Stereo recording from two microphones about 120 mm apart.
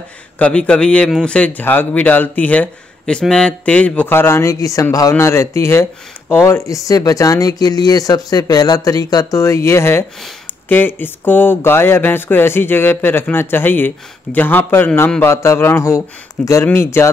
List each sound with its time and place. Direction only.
0.4 s speech: 10° left (ahead or behind)